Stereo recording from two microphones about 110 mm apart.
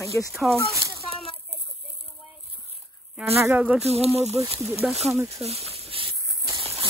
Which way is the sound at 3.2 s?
25° right (ahead or behind).